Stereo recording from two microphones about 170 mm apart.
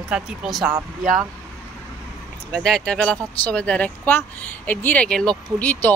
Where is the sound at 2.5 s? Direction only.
5° left (ahead or behind).